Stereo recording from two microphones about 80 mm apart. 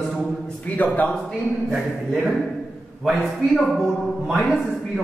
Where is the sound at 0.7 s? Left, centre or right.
Left.